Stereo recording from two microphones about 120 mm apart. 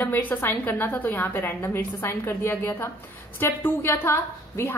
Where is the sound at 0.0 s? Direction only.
15° left (ahead or behind).